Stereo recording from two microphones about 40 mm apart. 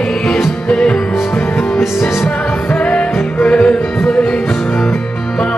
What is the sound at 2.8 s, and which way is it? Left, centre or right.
Music, left.